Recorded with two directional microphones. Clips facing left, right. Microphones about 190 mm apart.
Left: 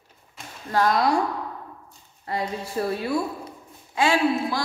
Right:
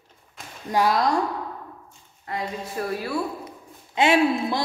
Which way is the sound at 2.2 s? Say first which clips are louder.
Left 2 dB; 30° left (ahead or behind).